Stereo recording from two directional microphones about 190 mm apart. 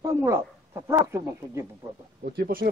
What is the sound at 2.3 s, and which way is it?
Speech, 55° right (ahead or behind).